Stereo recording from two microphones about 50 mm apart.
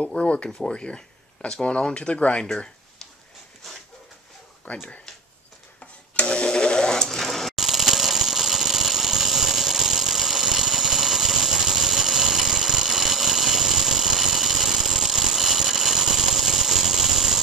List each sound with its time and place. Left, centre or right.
0.1 s speech: left
4.6 s speech: left
6.1 s sewing machine: centre
7.6 s engine: centre